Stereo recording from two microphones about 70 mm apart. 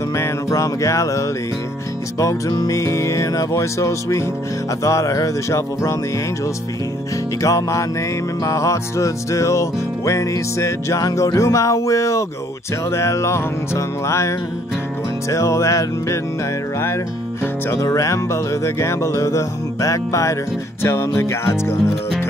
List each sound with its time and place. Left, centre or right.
0.1 s music: left
2.8 s music: left
7.4 s music: left
17.8 s music: left
20.8 s music: left